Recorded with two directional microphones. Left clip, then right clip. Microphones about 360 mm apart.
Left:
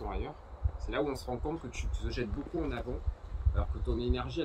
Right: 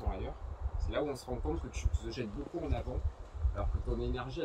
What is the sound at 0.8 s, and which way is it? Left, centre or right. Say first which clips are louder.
Speech: left 2 dB; centre.